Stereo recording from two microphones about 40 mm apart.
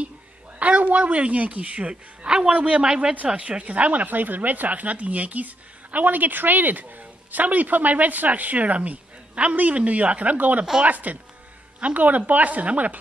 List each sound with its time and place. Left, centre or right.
0.6 s speech: right
2.8 s speech: right
10.6 s speech: right
10.9 s speech: right